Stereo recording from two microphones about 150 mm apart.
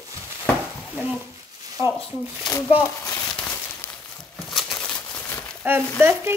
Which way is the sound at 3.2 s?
5° left (ahead or behind).